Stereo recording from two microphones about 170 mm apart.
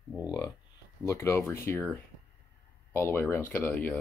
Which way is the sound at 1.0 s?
15° left (ahead or behind).